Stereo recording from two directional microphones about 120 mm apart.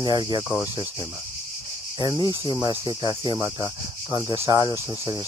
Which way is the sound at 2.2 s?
35° left (ahead or behind).